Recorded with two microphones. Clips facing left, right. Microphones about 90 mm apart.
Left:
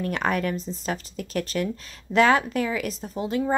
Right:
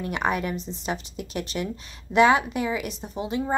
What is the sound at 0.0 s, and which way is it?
A woman's voice, 15° right (ahead or behind).